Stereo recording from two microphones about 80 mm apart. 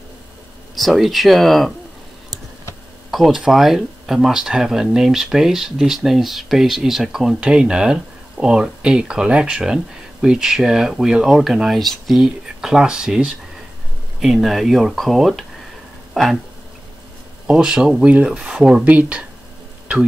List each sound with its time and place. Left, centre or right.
0.7 s speech: centre
3.1 s speech: centre
17.5 s speech: centre